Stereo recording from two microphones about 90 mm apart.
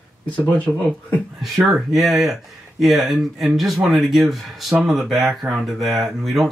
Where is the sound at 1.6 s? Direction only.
Centre (ahead or behind).